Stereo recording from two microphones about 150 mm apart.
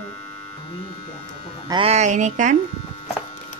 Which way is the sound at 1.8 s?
50° right (ahead or behind).